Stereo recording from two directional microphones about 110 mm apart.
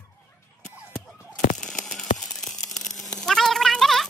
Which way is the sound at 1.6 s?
5° left (ahead or behind).